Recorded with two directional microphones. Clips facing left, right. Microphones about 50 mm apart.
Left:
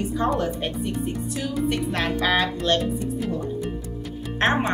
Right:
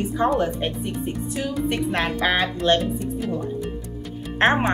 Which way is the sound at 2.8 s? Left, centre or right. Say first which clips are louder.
Even; centre.